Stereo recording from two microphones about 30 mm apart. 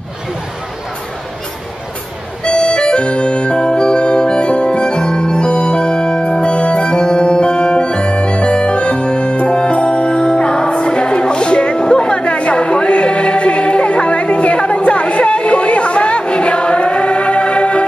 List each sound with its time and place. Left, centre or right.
2.4 s music: left